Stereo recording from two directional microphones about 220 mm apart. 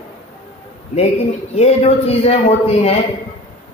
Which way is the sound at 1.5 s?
30° left (ahead or behind).